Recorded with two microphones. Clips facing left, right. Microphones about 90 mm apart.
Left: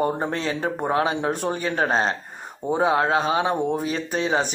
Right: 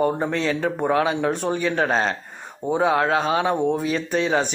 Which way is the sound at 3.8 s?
35° left (ahead or behind).